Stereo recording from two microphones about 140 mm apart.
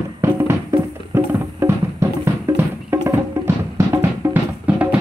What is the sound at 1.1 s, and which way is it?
Music, 15° right (ahead or behind).